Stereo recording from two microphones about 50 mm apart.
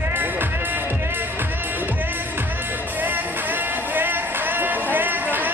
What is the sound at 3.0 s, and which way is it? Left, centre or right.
Music, right.